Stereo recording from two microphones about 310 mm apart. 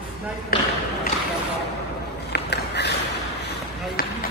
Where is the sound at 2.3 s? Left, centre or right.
Left.